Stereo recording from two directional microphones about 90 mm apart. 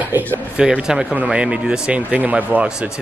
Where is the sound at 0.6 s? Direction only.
10° right (ahead or behind).